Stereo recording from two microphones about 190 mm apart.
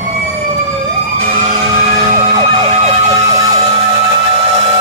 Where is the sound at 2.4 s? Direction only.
30° right (ahead or behind).